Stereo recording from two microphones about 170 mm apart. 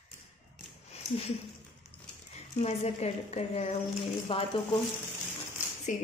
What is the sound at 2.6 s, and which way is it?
Speech, 40° left (ahead or behind).